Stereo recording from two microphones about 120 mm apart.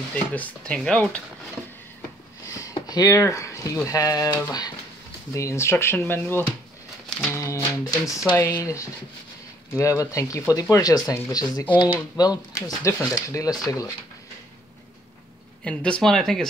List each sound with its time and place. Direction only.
0.1 s speech: 10° left (ahead or behind)
2.0 s a sound: 30° left (ahead or behind)
3.8 s speech: 30° left (ahead or behind)
15.6 s speech: 10° left (ahead or behind)